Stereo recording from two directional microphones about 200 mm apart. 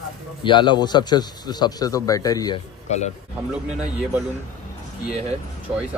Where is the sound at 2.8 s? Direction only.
35° left (ahead or behind).